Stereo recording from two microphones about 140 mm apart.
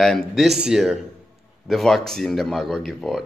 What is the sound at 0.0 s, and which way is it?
A man's voice, 5° left (ahead or behind).